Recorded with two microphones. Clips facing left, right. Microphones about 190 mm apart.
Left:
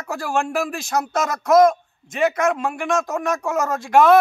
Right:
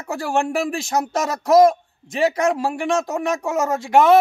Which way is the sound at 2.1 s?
30° right (ahead or behind).